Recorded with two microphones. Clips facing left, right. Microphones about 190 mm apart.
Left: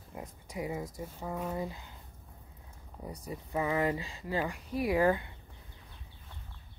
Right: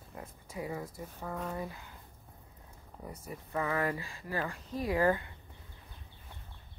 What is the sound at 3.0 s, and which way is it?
Speech, 15° left (ahead or behind).